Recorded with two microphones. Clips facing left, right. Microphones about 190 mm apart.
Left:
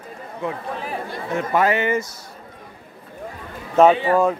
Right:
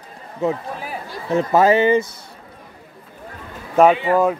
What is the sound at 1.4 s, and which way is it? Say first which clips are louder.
Speech: right 5 dB; 35° right (ahead or behind).